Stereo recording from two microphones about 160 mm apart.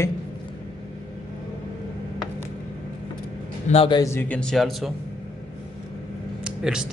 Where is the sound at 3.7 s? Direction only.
35° left (ahead or behind).